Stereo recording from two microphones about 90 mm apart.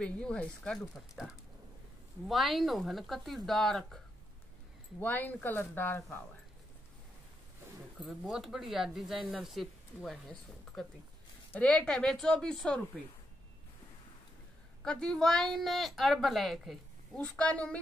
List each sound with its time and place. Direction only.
0.0 s speech: 10° left (ahead or behind)
2.2 s speech: centre (ahead or behind)
5.0 s speech: 20° left (ahead or behind)
8.0 s speech: 5° right (ahead or behind)
11.5 s speech: 15° left (ahead or behind)
14.8 s speech: 5° left (ahead or behind)
17.2 s speech: 15° left (ahead or behind)